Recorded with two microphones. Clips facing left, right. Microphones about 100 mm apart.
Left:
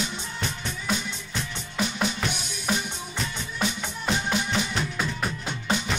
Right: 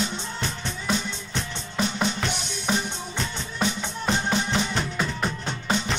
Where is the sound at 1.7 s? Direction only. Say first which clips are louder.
Right 2 dB; 5° left (ahead or behind).